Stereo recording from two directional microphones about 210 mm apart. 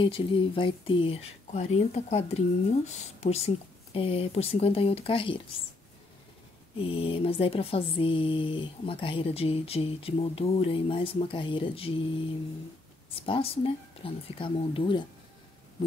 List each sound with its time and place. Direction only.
0.0 s speech: 25° left (ahead or behind)
6.8 s speech: 25° left (ahead or behind)
13.1 s speech: 25° left (ahead or behind)